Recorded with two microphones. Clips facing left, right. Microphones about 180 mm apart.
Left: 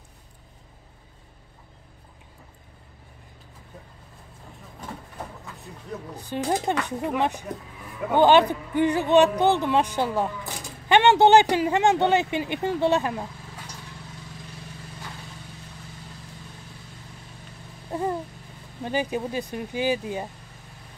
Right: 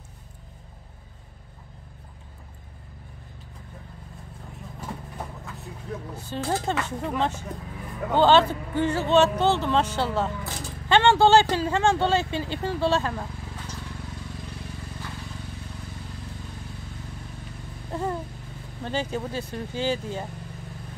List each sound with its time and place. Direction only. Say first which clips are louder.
5.9 s speech: even; centre (ahead or behind)
6.2 s a man's voice: left 2 dB; 15° left (ahead or behind)
17.9 s a sound: left 2 dB; 10° left (ahead or behind)
18.9 s a man's voice: left 2 dB; 15° left (ahead or behind)